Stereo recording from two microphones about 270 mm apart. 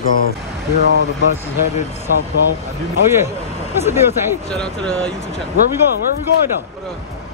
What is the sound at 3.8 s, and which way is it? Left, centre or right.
Speech, centre.